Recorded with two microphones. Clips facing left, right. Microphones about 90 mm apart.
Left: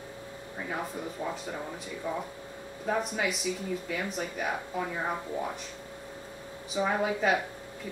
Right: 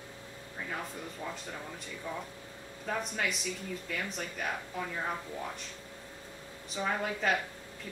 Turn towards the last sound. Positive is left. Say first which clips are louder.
# left 4 dB
turn(degrees=5)  # may be behind; listen again after turning